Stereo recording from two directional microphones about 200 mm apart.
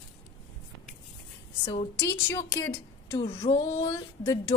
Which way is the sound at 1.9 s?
15° left (ahead or behind).